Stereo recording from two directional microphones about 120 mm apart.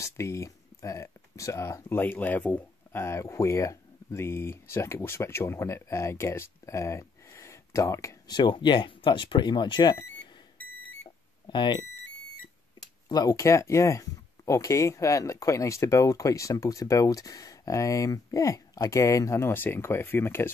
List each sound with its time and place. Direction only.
0.0 s speech: 25° left (ahead or behind)
8.3 s speech: 40° left (ahead or behind)
11.4 s speech: 40° left (ahead or behind)
13.1 s speech: 30° left (ahead or behind)